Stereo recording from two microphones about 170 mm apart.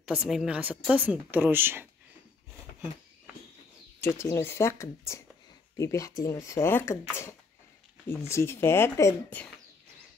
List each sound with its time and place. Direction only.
0.0 s speech: centre (ahead or behind)
4.0 s speech: 15° left (ahead or behind)